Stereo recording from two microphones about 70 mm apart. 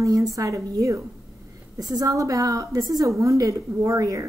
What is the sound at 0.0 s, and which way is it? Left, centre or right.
A woman's voice, right.